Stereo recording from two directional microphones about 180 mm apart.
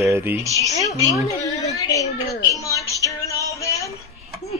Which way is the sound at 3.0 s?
15° left (ahead or behind).